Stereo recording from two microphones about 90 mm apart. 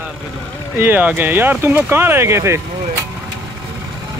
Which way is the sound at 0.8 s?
20° right (ahead or behind).